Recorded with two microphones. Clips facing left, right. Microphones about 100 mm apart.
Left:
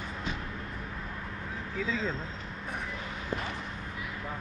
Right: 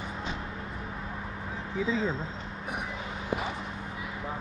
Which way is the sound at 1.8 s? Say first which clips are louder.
Right 4 dB; 15° right (ahead or behind).